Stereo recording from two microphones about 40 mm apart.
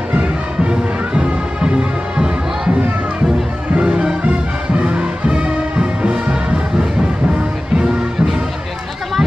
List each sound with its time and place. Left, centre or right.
0.7 s music: right
3.7 s music: right
7.7 s music: centre